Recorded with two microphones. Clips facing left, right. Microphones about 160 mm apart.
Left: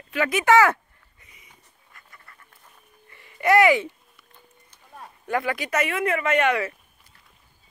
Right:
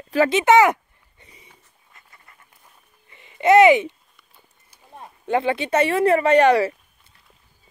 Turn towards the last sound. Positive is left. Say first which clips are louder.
# right 7 dB
turn(degrees=-35)  # may be behind; listen again after turning